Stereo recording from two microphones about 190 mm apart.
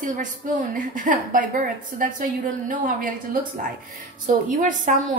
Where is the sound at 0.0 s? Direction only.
40° right (ahead or behind).